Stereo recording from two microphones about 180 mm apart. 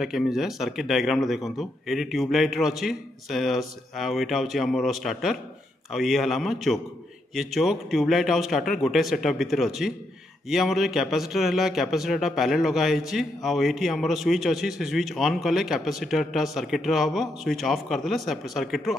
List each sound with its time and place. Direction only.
0.0 s a man's voice: centre (ahead or behind)